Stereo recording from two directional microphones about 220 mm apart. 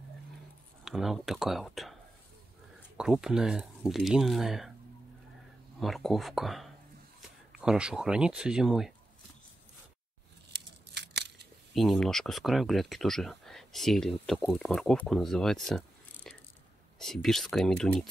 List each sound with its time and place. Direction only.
0.8 s speech: centre (ahead or behind)
3.0 s speech: 5° right (ahead or behind)
5.8 s speech: centre (ahead or behind)
11.0 s scissors: 50° right (ahead or behind)
11.7 s speech: centre (ahead or behind)
16.3 s mechanisms: 5° left (ahead or behind)
17.0 s speech: centre (ahead or behind)